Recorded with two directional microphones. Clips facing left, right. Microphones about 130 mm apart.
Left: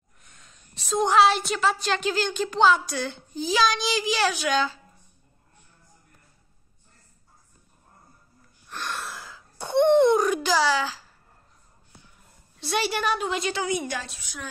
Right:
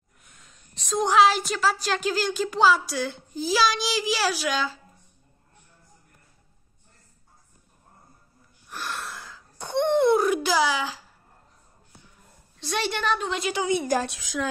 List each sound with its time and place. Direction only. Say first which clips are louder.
0.2 s a woman's voice: even; centre (ahead or behind)
8.6 s wheeze: left 1 dB; 5° right (ahead or behind)
12.5 s a woman's voice: left 2 dB; 5° left (ahead or behind)
13.6 s a woman's voice: right 2 dB; 25° right (ahead or behind)
14.0 s a woman's voice: right 10 dB; 90° right